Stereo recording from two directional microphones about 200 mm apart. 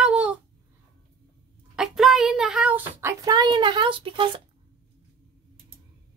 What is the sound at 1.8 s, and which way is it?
Speech, centre (ahead or behind).